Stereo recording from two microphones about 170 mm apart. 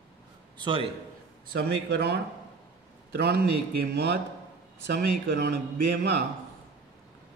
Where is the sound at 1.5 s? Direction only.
70° right (ahead or behind).